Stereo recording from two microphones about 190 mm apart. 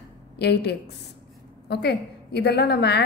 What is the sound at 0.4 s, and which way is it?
A woman's voice, 60° left (ahead or behind).